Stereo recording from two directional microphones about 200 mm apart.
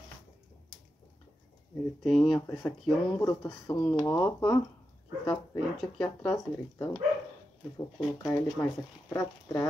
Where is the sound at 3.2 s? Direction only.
15° left (ahead or behind).